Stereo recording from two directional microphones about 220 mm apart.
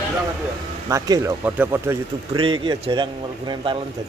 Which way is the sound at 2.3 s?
20° right (ahead or behind).